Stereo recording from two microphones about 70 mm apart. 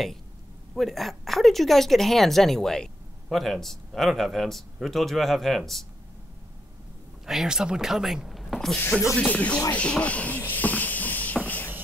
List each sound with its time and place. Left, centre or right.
0.7 s speech: centre
7.2 s speech: centre
8.7 s speech: left
9.8 s a sound: centre